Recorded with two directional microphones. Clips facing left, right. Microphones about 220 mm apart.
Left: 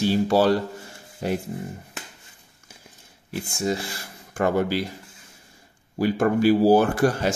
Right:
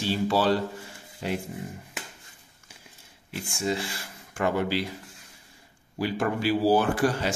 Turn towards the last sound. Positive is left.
turn(degrees=45)  # may be behind; listen again after turning